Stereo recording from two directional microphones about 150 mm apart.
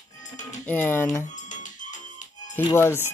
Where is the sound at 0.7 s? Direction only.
15° left (ahead or behind).